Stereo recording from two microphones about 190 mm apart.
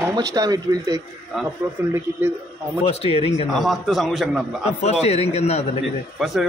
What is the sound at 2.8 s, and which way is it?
Speech, 30° left (ahead or behind).